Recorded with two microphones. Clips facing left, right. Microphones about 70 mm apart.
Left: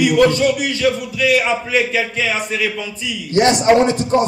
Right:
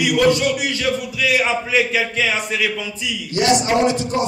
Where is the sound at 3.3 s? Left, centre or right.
Left.